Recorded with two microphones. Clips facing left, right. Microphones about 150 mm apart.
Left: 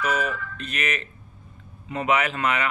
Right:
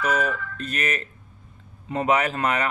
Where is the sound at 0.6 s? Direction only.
40° right (ahead or behind).